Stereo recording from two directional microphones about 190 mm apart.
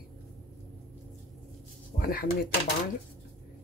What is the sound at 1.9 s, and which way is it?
Speech, 50° left (ahead or behind).